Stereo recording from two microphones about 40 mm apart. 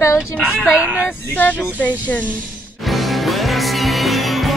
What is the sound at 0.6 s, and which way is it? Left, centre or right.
Speech, right.